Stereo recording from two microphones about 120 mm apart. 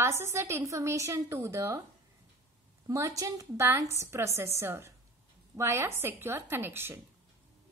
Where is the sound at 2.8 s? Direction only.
25° right (ahead or behind).